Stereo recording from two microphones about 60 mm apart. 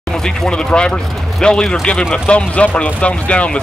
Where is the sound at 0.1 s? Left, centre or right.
Centre.